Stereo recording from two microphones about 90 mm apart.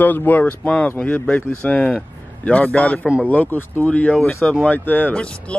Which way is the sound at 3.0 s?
10° right (ahead or behind).